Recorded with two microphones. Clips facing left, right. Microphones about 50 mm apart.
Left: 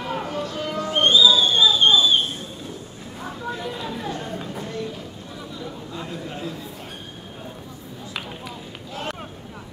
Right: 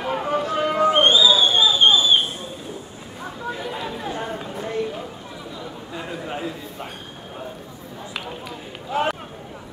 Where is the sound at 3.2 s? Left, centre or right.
Centre.